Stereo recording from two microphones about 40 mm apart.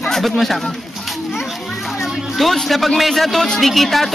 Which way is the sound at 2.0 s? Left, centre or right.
Centre.